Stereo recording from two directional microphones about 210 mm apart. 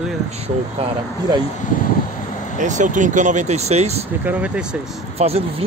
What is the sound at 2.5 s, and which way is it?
Speech, 35° right (ahead or behind).